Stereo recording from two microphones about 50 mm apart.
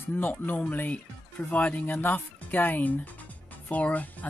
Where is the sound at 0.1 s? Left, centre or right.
Left.